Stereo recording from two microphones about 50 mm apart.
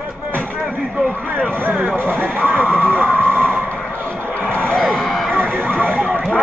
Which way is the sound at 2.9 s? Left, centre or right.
Right.